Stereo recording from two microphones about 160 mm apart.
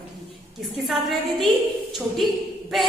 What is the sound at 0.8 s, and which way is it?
Speech, centre (ahead or behind).